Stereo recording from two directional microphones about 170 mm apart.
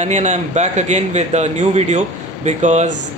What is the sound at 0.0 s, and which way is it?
A man's voice, 45° right (ahead or behind).